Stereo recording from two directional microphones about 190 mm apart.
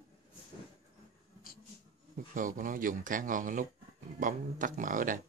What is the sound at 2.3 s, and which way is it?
Speech, 45° right (ahead or behind).